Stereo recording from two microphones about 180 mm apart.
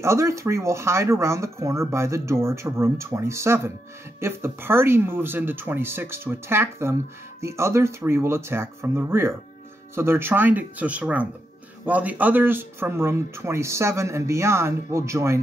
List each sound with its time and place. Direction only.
0.0 s speech: 15° right (ahead or behind)